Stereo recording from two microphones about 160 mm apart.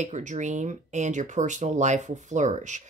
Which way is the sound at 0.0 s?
50° right (ahead or behind).